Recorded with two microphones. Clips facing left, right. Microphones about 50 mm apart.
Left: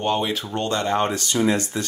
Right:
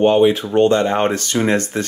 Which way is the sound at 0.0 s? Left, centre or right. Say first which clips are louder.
Right 10 dB; right.